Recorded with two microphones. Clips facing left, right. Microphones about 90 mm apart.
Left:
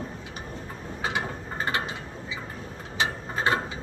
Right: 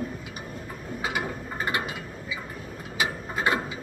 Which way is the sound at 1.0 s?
30° left (ahead or behind).